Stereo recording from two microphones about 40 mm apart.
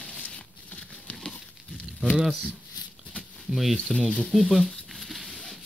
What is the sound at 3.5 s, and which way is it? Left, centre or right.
Speech, centre.